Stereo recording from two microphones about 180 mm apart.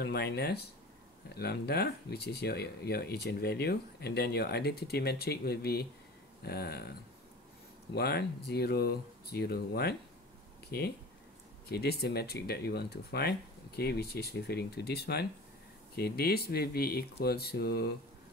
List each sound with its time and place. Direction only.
0.0 s speech: 60° left (ahead or behind)
7.9 s speech: 60° left (ahead or behind)